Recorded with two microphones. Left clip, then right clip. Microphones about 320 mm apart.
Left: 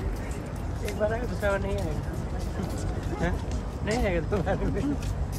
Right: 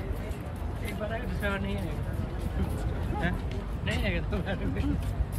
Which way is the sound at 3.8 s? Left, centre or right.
Centre.